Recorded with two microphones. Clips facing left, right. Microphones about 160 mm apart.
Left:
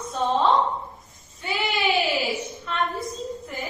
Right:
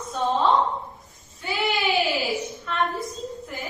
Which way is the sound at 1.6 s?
Centre (ahead or behind).